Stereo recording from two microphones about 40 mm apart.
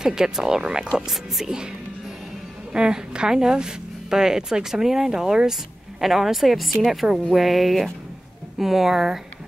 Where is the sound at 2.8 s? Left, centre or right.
Right.